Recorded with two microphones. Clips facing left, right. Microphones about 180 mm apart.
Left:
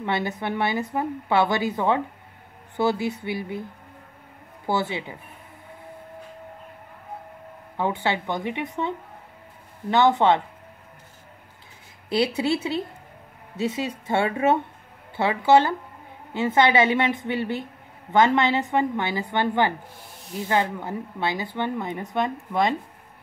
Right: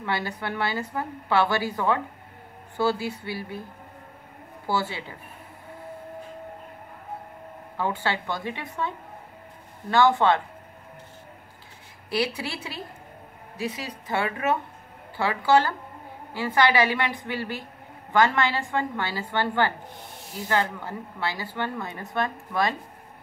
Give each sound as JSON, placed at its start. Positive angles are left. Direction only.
{"t": 0.0, "sound": "speech", "side_deg": 20}
{"t": 4.6, "sound": "speech", "side_deg": 20}
{"t": 7.7, "sound": "speech", "side_deg": 20}
{"t": 12.1, "sound": "speech", "side_deg": 25}